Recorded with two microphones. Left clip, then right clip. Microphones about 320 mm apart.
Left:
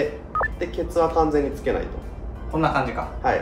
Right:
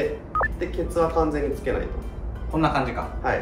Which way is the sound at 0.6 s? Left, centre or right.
Left.